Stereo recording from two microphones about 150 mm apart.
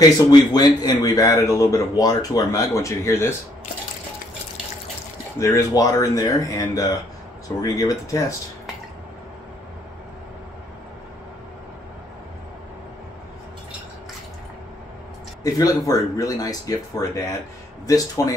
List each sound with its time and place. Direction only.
0.3 s speech: 25° left (ahead or behind)
5.4 s speech: 25° left (ahead or behind)
15.4 s speech: 25° left (ahead or behind)